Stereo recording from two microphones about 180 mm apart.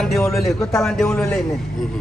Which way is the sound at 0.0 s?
Centre (ahead or behind).